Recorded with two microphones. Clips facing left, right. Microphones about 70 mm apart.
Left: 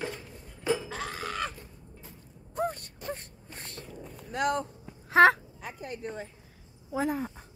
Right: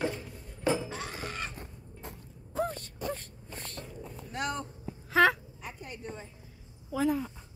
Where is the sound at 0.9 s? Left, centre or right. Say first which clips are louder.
Left 3 dB; left.